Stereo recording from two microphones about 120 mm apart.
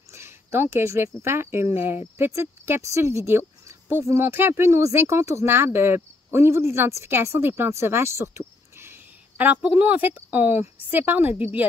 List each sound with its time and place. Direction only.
0.1 s a woman's voice: 20° right (ahead or behind)